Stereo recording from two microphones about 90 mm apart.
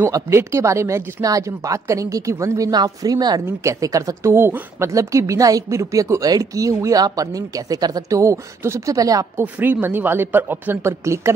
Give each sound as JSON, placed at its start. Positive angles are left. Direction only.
{"t": 0.1, "sound": "speech", "side_deg": -30}
{"t": 2.7, "sound": "speech", "side_deg": -45}
{"t": 3.4, "sound": "speech", "side_deg": -35}
{"t": 9.4, "sound": "speech", "side_deg": -20}